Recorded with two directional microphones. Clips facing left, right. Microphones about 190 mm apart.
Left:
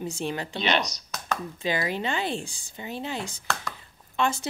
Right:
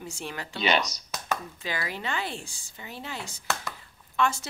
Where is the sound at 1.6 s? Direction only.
20° left (ahead or behind).